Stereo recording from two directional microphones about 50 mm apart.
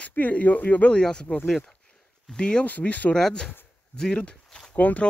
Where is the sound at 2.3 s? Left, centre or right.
Centre.